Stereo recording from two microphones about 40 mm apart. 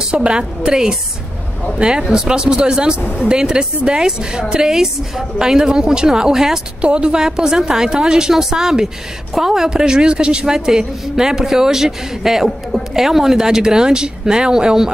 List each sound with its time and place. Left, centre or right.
0.1 s a woman's voice: right
6.8 s a woman's voice: right
7.2 s a woman's voice: centre